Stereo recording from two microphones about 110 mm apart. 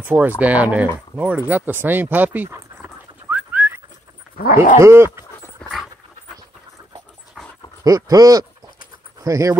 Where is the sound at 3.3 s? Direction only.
15° right (ahead or behind).